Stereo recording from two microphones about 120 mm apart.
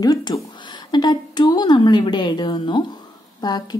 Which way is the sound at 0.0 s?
35° left (ahead or behind).